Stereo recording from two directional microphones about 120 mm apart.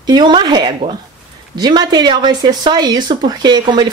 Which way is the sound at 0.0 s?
35° right (ahead or behind).